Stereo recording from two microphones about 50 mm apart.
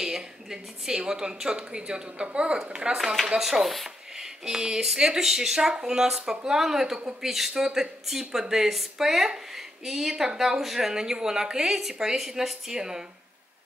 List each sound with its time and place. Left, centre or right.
0.0 s speech: centre